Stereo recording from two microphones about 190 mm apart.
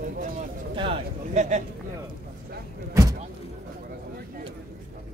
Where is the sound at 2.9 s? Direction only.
20° right (ahead or behind).